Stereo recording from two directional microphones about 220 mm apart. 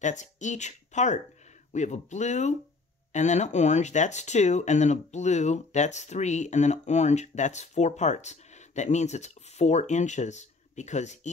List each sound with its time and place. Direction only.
0.0 s speech: 35° left (ahead or behind)